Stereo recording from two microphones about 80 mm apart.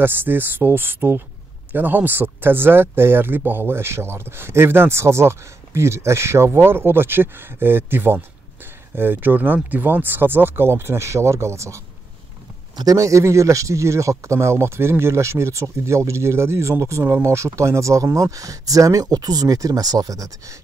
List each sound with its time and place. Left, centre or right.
0.0 s speech: right
12.7 s speech: right